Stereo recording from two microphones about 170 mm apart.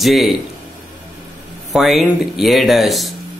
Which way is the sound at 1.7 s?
Centre (ahead or behind).